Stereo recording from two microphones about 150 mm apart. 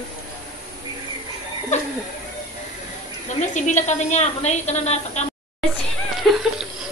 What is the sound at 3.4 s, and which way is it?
A woman's voice, 55° left (ahead or behind).